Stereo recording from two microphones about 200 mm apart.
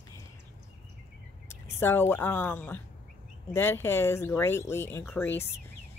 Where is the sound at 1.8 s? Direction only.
10° left (ahead or behind).